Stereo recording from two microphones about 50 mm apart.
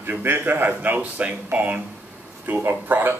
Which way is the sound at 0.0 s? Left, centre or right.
Right.